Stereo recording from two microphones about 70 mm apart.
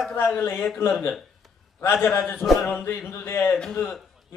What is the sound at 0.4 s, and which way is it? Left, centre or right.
Speech, left.